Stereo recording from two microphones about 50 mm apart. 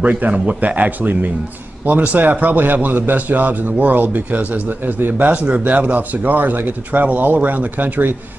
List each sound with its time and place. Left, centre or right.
0.0 s a man's voice: right